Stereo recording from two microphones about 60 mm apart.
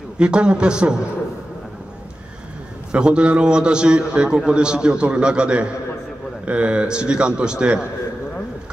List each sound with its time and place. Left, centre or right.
0.2 s a man's voice: centre
2.9 s a man's voice: centre